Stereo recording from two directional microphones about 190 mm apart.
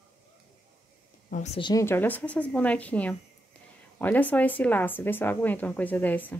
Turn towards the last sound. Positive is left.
turn(degrees=10)  # may be behind; listen again after turning